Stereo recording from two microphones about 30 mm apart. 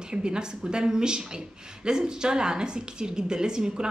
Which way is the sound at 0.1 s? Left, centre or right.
Right.